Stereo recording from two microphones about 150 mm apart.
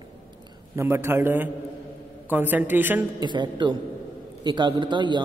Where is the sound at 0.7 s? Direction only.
15° right (ahead or behind).